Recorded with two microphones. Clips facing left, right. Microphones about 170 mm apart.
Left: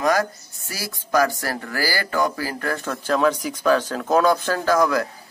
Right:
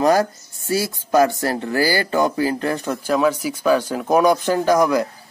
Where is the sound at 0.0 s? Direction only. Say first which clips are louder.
Right 4 dB; 30° right (ahead or behind).